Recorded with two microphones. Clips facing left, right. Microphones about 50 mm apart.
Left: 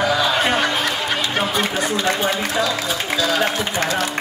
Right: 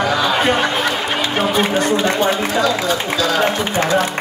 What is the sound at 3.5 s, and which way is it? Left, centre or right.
Speech, right.